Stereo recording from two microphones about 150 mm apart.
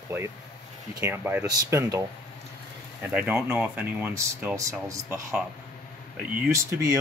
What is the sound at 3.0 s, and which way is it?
Speech, 10° right (ahead or behind).